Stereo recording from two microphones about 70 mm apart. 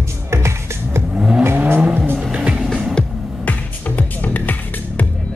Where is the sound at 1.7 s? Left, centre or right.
Right.